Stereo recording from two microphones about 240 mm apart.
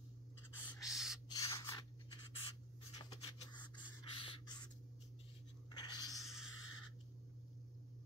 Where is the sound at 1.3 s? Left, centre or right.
Centre.